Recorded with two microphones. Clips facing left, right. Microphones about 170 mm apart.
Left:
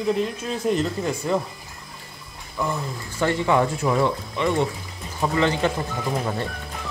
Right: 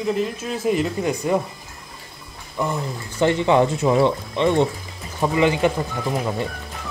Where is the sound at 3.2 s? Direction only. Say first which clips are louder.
Right 4 dB; 20° right (ahead or behind).